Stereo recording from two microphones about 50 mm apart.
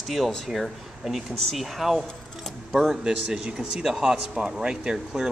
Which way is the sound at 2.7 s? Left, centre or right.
Centre.